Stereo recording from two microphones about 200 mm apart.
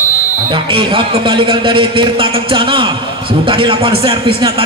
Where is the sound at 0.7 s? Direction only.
25° right (ahead or behind).